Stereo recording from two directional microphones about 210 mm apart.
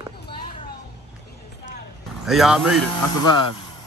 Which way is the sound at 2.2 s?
Centre (ahead or behind).